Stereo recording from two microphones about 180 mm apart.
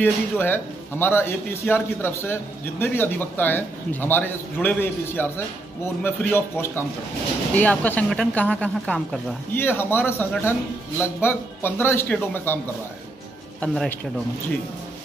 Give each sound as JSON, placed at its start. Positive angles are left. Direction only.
{"t": 0.0, "sound": "a man's voice", "side_deg": 10}
{"t": 13.6, "sound": "a man's voice", "side_deg": 5}